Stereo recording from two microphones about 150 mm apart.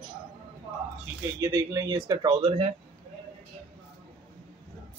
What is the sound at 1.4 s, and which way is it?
Speech, 25° right (ahead or behind).